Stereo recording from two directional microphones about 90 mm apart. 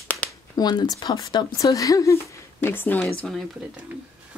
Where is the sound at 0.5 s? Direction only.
50° left (ahead or behind).